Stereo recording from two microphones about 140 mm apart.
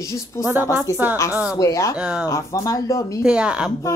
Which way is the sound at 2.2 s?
20° left (ahead or behind).